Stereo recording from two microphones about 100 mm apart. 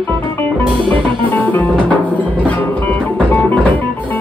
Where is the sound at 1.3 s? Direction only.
15° left (ahead or behind).